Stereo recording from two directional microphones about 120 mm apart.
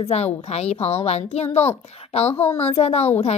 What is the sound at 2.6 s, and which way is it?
Speech, 60° left (ahead or behind).